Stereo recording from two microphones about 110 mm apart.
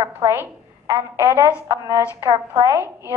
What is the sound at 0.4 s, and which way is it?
A woman's voice, 30° right (ahead or behind).